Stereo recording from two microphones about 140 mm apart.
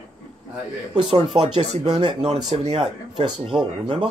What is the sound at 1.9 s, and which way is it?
Speech, 30° right (ahead or behind).